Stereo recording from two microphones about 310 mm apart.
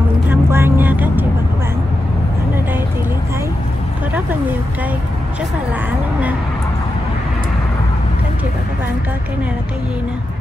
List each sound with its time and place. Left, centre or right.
0.3 s vehicle: centre